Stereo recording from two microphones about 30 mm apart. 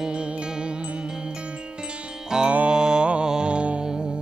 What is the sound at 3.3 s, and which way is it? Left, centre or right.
Music, right.